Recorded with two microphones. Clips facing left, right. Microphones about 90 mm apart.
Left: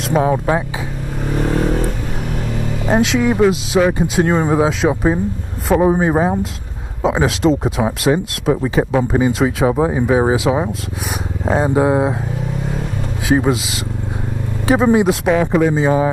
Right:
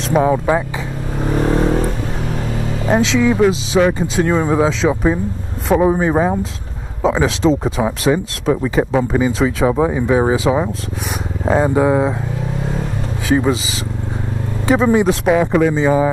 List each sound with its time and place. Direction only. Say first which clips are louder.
0.1 s speech: right 1 dB; centre (ahead or behind)
1.2 s vehicle: right 2 dB; 20° right (ahead or behind)
2.9 s speech: right 1 dB; 5° left (ahead or behind)
13.3 s speech: even; 5° left (ahead or behind)
15.2 s speech: right 1 dB; centre (ahead or behind)